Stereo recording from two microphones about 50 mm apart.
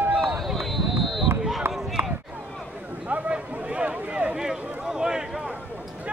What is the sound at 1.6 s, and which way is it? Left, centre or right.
Run, right.